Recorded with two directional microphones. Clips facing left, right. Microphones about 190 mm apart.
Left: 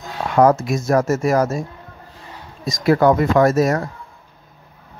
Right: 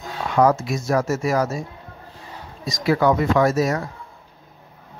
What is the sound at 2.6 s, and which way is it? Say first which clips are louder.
A man's voice: left 4 dB; 50° left (ahead or behind).